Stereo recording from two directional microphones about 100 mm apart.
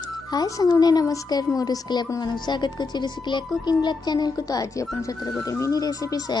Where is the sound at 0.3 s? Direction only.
40° left (ahead or behind).